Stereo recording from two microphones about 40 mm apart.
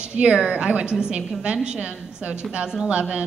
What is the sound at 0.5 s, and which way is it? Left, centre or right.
A woman's voice, right.